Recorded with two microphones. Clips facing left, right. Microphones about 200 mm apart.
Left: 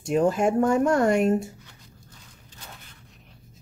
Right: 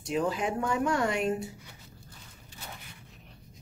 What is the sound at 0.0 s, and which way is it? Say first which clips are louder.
Speech: left 8 dB; 50° left (ahead or behind).